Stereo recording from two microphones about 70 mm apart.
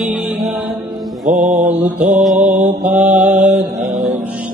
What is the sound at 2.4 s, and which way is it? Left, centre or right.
Mantra, right.